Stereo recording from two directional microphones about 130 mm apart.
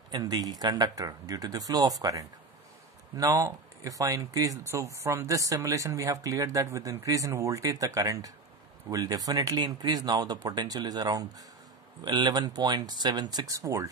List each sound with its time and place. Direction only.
0.1 s speech: 30° right (ahead or behind)